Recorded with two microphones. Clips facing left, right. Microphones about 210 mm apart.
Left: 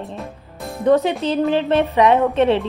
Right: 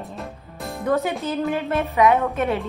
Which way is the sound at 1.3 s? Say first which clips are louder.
Left 7 dB; 30° left (ahead or behind).